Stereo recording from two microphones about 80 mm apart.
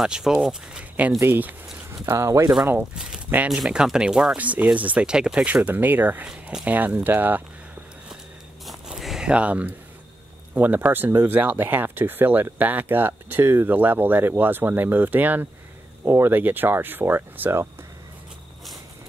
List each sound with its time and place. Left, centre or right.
0.0 s speech: centre
1.2 s speech: right
2.1 s speech: right
3.4 s speech: centre
4.4 s speech: centre
8.6 s a sound: centre
10.5 s speech: right
16.0 s speech: right